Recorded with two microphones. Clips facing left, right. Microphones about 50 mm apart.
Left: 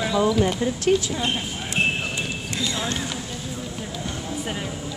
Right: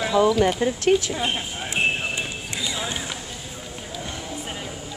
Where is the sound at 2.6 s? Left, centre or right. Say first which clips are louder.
Left 2 dB; centre.